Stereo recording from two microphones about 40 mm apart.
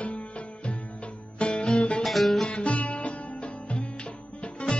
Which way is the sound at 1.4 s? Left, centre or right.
Left.